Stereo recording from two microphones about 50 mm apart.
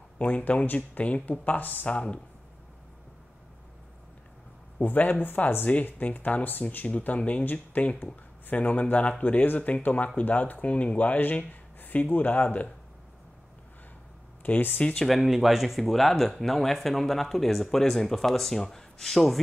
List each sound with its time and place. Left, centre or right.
0.2 s speech: left
1.9 s speech: left
4.7 s speech: left
14.4 s speech: left
14.8 s speech: left
15.2 s speech: centre